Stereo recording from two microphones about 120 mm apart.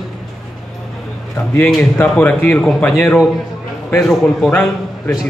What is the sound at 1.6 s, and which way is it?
Speech, 5° left (ahead or behind).